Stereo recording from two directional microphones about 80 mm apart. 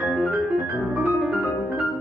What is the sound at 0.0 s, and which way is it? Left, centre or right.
Piano, centre.